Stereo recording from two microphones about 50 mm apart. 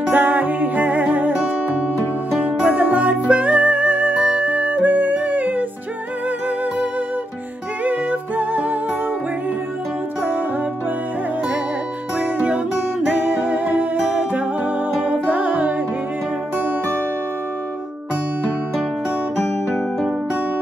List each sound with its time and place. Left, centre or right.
0.1 s music: right
2.6 s music: right
7.8 s music: right
12.2 s music: right